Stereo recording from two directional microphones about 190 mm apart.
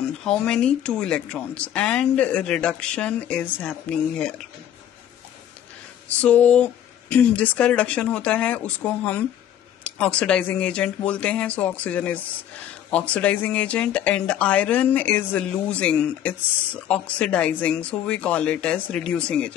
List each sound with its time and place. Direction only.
0.2 s speech: 5° left (ahead or behind)
6.0 s speech: 10° left (ahead or behind)